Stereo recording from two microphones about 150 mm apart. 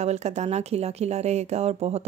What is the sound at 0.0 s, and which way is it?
Speech, 50° right (ahead or behind).